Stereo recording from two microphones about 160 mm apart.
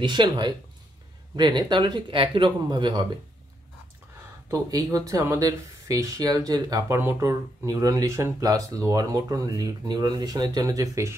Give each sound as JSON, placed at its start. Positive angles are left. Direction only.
{"t": 0.0, "sound": "speech", "side_deg": -30}
{"t": 4.5, "sound": "speech", "side_deg": -20}